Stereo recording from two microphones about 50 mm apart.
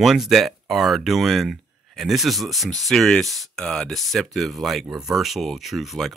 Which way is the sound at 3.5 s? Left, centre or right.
Centre.